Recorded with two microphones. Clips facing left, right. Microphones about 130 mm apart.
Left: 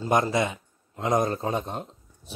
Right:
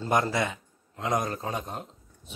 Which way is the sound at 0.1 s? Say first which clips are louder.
Left 3 dB; 20° left (ahead or behind).